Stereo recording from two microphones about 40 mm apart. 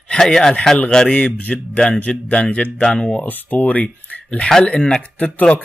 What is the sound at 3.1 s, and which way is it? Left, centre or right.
Speech, left.